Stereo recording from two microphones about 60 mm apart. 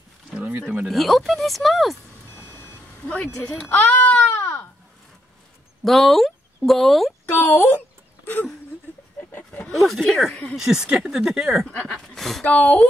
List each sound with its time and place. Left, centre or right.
0.4 s a sound: right
0.8 s speech: centre
3.1 s speech: centre
3.7 s speech: left
5.9 s speech: centre
7.3 s speech: left
9.2 s a sound: left
9.6 s speech: centre
10.5 s speech: centre
12.2 s speech: centre
12.4 s speech: left